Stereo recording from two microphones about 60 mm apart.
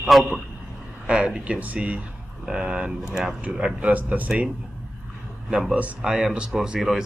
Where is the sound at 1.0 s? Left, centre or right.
Centre.